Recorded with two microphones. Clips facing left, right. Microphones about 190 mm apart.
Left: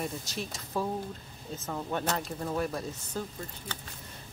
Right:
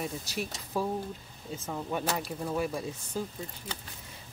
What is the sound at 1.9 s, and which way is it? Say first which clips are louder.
Speech: even; 10° right (ahead or behind).